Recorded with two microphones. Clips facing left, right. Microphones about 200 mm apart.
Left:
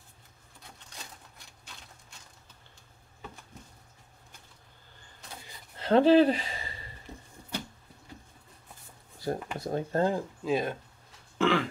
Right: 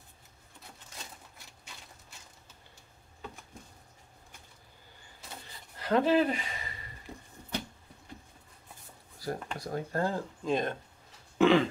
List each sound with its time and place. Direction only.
5.8 s speech: 30° left (ahead or behind)
9.2 s a sound: 25° left (ahead or behind)
9.6 s speech: 25° left (ahead or behind)
10.4 s speech: 5° left (ahead or behind)
11.3 s throat clearing: 15° right (ahead or behind)